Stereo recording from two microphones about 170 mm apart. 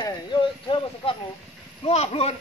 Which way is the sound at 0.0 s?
25° left (ahead or behind).